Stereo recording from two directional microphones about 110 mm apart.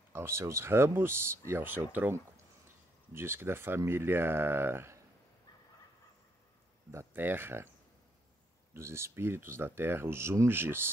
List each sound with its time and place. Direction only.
0.1 s speech: 25° right (ahead or behind)
6.9 s speech: 20° right (ahead or behind)
8.7 s speech: 25° right (ahead or behind)